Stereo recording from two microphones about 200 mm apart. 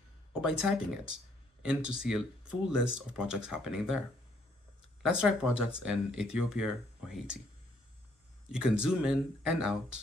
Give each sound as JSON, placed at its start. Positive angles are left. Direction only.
{"t": 0.3, "sound": "speech", "side_deg": -5}
{"t": 5.0, "sound": "speech", "side_deg": -5}
{"t": 8.5, "sound": "speech", "side_deg": -5}